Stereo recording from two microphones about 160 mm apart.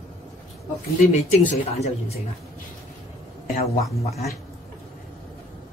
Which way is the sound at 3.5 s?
70° left (ahead or behind).